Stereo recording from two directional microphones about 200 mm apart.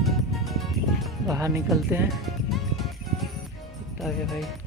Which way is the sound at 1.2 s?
15° right (ahead or behind).